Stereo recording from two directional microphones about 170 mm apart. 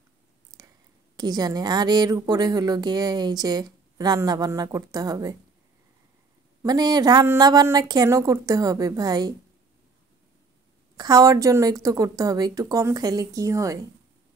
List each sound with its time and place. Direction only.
0.5 s a sound: 20° right (ahead or behind)
1.1 s speech: 25° right (ahead or behind)
6.6 s speech: 25° right (ahead or behind)
11.0 s speech: 20° right (ahead or behind)